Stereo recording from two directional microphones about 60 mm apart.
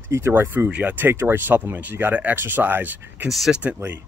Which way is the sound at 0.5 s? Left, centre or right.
Right.